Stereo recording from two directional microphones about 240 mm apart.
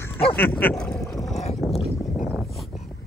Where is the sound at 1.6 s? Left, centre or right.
Centre.